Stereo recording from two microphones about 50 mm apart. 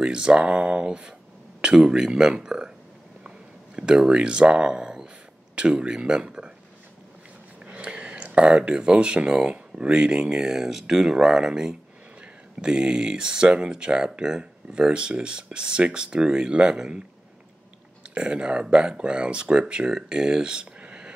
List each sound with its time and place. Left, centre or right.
0.0 s speech: centre
7.8 s speech: right
18.1 s speech: right